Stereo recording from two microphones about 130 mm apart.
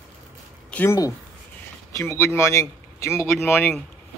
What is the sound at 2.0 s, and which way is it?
Speech, 20° left (ahead or behind).